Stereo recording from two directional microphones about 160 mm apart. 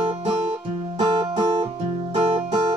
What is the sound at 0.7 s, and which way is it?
Music, 35° right (ahead or behind).